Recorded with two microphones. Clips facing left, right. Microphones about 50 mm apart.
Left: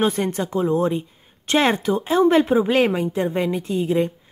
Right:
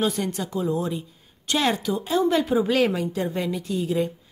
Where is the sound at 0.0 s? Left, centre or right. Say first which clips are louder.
Left 4 dB; left.